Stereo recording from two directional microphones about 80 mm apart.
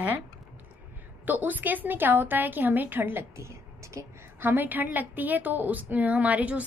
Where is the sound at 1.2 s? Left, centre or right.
Right.